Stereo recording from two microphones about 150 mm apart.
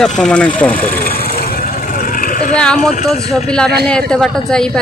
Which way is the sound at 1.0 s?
80° left.